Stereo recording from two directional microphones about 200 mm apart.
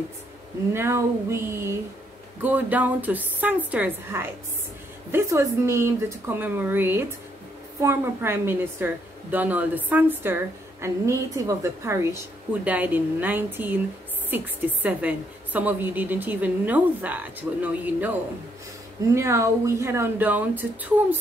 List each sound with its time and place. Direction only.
0.7 s a woman's voice: 15° right (ahead or behind)
19.1 s a woman's voice: 15° right (ahead or behind)